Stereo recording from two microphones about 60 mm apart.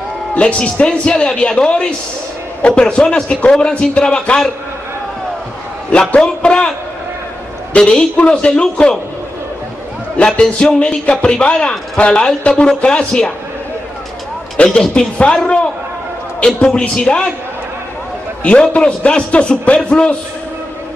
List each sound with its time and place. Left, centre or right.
0.3 s a man's voice: centre
5.9 s a man's voice: centre
7.7 s a man's voice: centre
10.1 s a man's voice: centre
14.6 s a man's voice: centre
18.4 s a man's voice: centre